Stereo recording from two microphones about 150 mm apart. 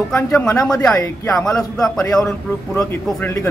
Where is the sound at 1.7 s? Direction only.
5° left (ahead or behind).